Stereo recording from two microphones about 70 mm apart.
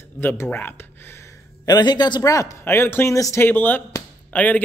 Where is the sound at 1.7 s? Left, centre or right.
Left.